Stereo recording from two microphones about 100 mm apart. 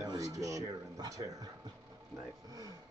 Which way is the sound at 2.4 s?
40° right (ahead or behind).